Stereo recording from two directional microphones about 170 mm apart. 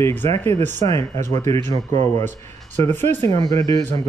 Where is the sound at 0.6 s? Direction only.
45° right (ahead or behind).